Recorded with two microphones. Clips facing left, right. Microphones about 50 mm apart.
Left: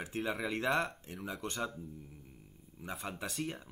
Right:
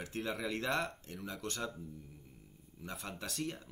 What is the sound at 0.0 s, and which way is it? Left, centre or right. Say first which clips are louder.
Speech: left 2 dB; centre.